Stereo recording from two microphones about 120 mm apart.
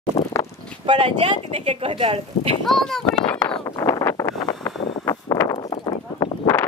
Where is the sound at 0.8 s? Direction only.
40° right (ahead or behind).